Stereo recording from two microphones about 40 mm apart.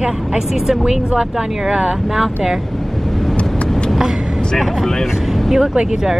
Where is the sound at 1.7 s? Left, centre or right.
Centre.